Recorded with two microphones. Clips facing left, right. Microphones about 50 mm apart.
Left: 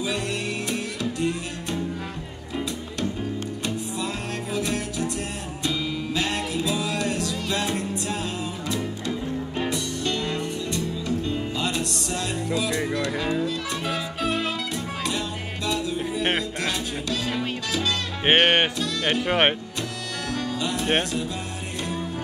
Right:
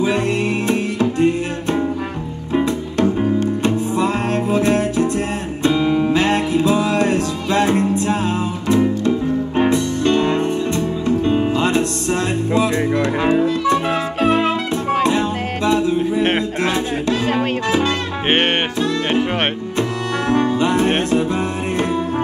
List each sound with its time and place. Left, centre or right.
0.0 s music: right